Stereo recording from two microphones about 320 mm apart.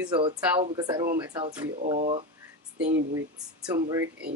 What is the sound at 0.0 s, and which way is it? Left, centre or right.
Speech, centre.